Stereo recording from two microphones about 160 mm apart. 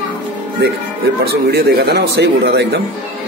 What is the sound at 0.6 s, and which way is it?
Speech, 90° right.